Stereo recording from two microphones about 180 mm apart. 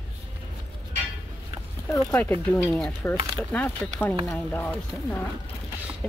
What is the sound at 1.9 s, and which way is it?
Speech, 15° left (ahead or behind).